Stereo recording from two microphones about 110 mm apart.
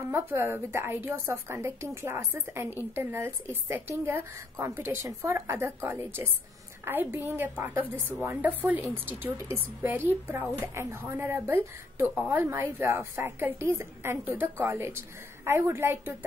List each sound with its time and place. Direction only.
0.1 s a woman's voice: 20° right (ahead or behind)